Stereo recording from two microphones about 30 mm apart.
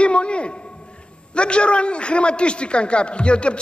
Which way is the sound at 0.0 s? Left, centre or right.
Left.